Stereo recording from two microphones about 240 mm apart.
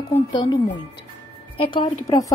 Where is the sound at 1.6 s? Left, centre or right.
Left.